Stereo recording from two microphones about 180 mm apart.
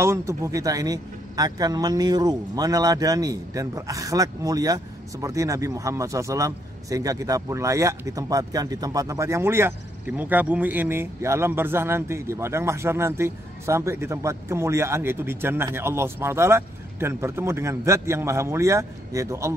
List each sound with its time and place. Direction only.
0.0 s a man's voice: 15° right (ahead or behind)